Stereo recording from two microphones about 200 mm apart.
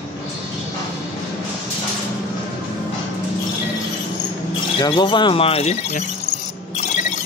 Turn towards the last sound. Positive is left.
turn(degrees=35)  # may be behind; listen again after turning